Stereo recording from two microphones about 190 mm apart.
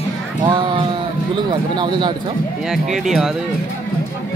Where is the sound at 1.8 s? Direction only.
25° right (ahead or behind).